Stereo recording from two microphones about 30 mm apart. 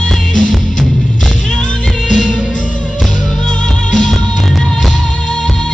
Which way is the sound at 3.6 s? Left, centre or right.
Left.